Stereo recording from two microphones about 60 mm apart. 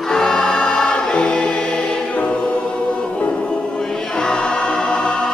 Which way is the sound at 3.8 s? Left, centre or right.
Centre.